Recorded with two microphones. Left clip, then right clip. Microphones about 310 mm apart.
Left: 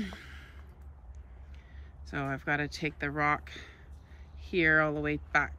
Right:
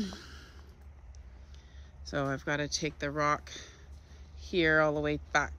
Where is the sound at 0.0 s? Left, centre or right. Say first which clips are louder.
Right 1 dB; centre.